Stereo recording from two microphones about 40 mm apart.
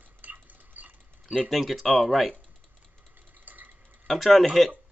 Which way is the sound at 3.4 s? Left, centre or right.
Right.